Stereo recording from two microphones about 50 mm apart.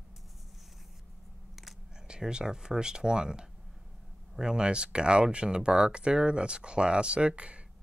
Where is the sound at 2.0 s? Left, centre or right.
Centre.